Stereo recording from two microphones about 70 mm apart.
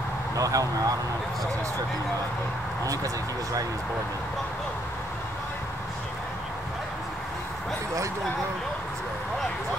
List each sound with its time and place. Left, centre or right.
0.4 s speech: right
2.8 s speech: right